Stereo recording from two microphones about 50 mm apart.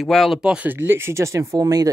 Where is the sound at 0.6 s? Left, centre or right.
Right.